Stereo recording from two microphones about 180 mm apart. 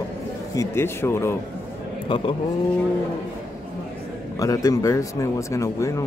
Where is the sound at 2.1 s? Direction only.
25° left (ahead or behind).